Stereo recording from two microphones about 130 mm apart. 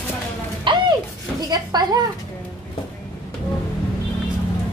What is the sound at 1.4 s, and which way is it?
Speech, 30° right (ahead or behind).